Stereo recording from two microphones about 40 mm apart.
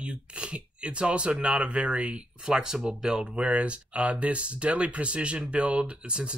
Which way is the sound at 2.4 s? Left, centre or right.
Centre.